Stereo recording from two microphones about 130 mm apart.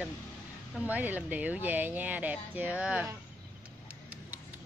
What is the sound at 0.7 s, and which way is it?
Speech, 10° right (ahead or behind).